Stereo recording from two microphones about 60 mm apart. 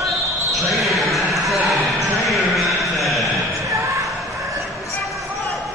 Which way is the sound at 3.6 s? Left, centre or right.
Right.